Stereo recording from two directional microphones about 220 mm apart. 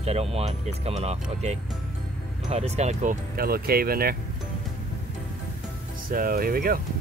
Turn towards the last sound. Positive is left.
turn(degrees=-40)  # may be behind; listen again after turning